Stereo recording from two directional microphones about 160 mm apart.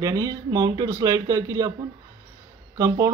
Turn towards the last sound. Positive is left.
turn(degrees=-20)  # may be behind; listen again after turning